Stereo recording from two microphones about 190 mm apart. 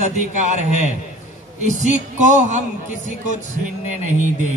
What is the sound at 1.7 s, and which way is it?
Speech, 40° right (ahead or behind).